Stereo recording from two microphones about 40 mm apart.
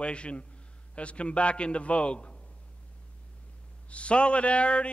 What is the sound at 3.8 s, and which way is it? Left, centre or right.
A man's voice, left.